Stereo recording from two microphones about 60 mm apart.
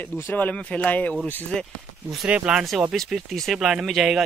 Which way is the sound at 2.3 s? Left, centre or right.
Centre.